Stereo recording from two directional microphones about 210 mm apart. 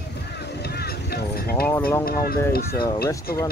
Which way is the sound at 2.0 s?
45° left (ahead or behind).